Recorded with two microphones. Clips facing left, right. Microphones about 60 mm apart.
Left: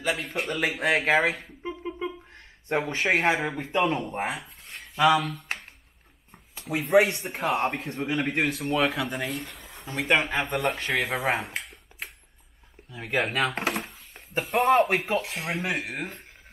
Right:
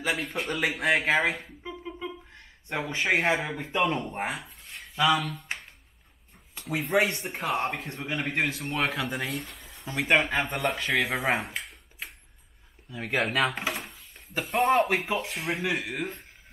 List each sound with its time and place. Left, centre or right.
0.1 s speech: centre
1.6 s a sound: left
3.0 s speech: centre